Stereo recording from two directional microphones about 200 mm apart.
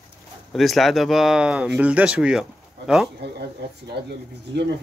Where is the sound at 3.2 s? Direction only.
55° right (ahead or behind).